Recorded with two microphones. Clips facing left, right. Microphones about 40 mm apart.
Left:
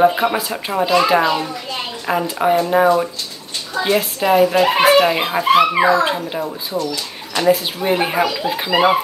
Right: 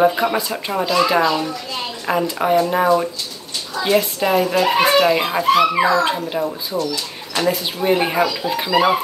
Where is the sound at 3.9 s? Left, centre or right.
Centre.